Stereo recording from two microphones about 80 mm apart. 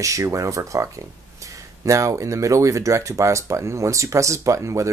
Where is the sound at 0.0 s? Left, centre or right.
Right.